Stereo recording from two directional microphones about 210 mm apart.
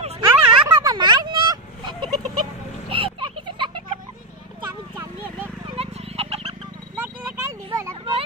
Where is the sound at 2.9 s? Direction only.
25° right (ahead or behind).